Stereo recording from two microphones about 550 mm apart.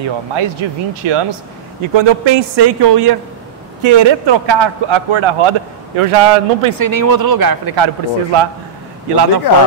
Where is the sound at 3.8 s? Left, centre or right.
Right.